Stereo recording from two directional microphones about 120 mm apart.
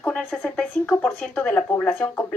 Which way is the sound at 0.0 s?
5° left (ahead or behind).